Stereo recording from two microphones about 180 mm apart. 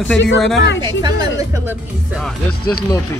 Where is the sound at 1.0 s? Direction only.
25° right (ahead or behind).